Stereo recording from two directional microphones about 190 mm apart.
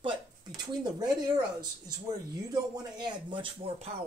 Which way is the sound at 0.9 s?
20° right (ahead or behind).